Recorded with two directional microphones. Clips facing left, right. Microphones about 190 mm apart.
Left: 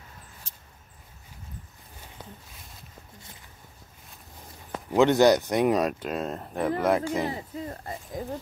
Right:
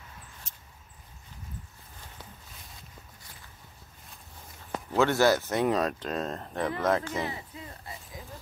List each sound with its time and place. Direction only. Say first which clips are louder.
4.9 s speech: left 5 dB; 20° left (ahead or behind)
7.2 s speech: left 6 dB; 40° left (ahead or behind)